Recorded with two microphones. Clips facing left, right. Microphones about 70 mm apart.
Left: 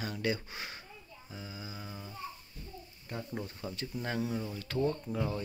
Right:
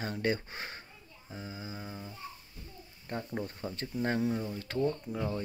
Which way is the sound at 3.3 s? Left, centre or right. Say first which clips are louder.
Right 2 dB; centre.